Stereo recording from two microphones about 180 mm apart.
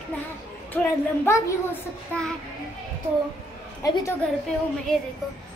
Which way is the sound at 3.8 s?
20° left (ahead or behind).